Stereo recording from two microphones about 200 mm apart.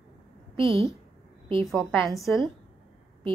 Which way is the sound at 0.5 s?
30° right (ahead or behind).